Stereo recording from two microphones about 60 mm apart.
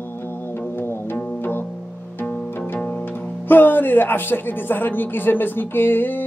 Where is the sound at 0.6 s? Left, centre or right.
Left.